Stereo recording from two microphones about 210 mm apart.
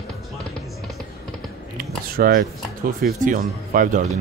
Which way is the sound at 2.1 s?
45° right (ahead or behind).